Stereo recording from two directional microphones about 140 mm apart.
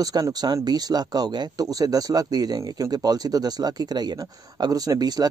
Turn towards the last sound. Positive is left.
turn(degrees=-30)  # may be behind; listen again after turning